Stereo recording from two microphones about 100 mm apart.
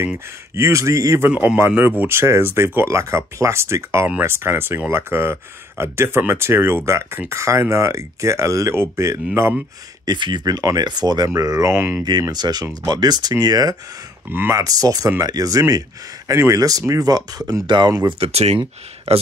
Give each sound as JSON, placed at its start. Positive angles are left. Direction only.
{"t": 0.6, "sound": "speech", "side_deg": -30}
{"t": 1.3, "sound": "a man's voice", "side_deg": -10}
{"t": 10.0, "sound": "speech", "side_deg": -50}
{"t": 12.0, "sound": "speech", "side_deg": -45}
{"t": 17.6, "sound": "speech", "side_deg": -50}
{"t": 18.0, "sound": "speech", "side_deg": -80}